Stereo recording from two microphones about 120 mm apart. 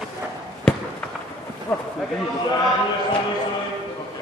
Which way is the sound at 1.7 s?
20° left (ahead or behind).